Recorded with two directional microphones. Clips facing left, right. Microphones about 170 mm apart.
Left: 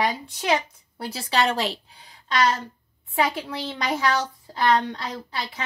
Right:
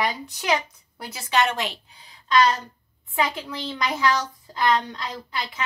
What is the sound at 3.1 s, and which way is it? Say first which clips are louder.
A child's voice: left 2 dB; 25° left (ahead or behind).